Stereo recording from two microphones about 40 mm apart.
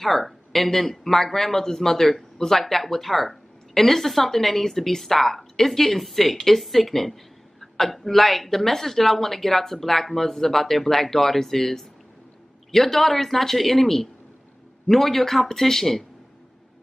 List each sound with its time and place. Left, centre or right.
0.0 s speech: centre